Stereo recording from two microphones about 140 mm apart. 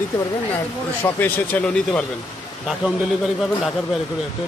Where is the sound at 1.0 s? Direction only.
15° left (ahead or behind).